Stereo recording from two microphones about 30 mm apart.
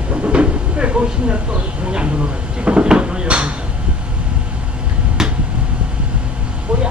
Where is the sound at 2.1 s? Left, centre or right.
Right.